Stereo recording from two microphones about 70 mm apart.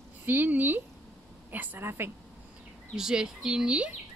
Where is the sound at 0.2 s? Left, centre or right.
Right.